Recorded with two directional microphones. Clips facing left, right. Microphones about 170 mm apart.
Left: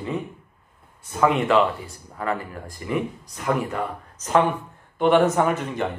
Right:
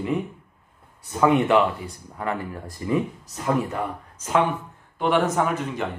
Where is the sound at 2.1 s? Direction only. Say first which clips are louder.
Left 1 dB; 20° right (ahead or behind).